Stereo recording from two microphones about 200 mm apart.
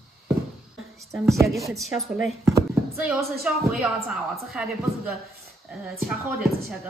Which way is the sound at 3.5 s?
5° right (ahead or behind).